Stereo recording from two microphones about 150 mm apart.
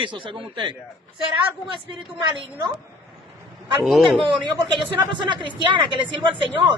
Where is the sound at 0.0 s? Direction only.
35° right (ahead or behind).